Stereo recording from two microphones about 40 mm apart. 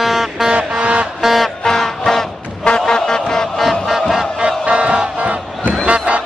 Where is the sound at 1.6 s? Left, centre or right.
Centre.